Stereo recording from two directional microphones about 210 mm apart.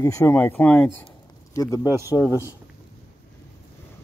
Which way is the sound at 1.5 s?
15° left (ahead or behind).